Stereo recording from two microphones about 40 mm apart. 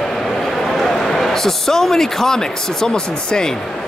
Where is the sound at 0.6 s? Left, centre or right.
Centre; by 3.5 s left.